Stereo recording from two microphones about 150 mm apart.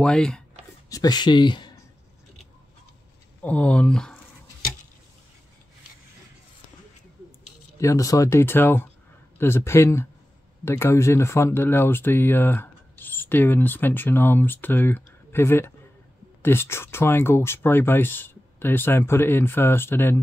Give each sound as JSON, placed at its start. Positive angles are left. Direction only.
{"t": 0.0, "sound": "speech", "side_deg": 5}
{"t": 0.8, "sound": "speech", "side_deg": 25}
{"t": 3.4, "sound": "speech", "side_deg": 10}
{"t": 7.8, "sound": "speech", "side_deg": 20}